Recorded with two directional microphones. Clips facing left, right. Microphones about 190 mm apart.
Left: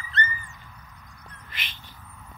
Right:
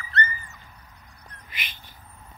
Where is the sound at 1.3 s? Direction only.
10° right (ahead or behind).